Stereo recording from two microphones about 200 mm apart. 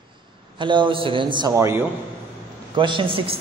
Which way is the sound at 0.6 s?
25° right (ahead or behind).